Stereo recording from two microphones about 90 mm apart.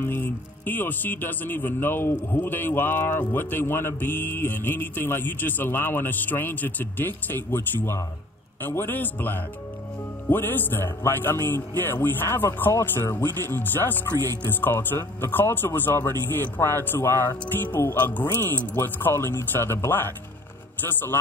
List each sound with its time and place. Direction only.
0.0 s speech: 25° left (ahead or behind)